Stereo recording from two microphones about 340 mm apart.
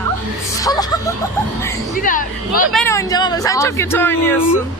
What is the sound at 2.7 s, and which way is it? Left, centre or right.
Speech, centre.